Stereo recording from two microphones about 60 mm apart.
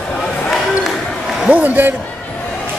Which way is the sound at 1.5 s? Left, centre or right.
Right.